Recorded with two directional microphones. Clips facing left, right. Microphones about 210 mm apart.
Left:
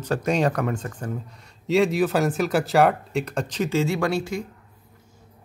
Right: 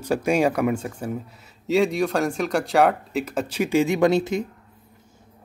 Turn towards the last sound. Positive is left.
turn(degrees=-20)  # may be behind; listen again after turning